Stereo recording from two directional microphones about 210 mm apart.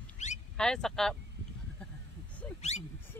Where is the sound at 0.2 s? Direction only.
35° left (ahead or behind).